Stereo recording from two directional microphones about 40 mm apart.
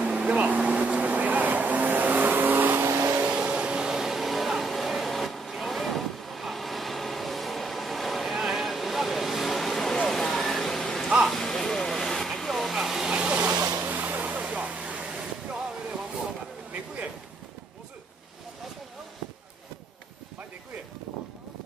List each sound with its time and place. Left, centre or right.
0.0 s vehicle: right
0.3 s vehicle: right
3.3 s vehicle: right; by 8.4 s centre
8.4 s a sound: centre
12.4 s vehicle: centre
12.7 s vehicle: centre
13.1 s vehicle: right
13.8 s vehicle: right
14.2 s vehicle: right
15.0 s waves: centre